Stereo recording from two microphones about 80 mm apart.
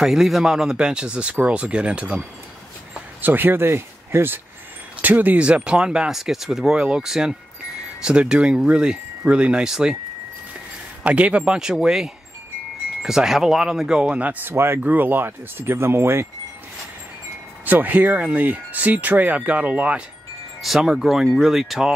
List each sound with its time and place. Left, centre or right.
0.0 s speech: centre
11.1 s speech: centre
14.4 s speech: right
17.6 s speech: right
20.6 s speech: centre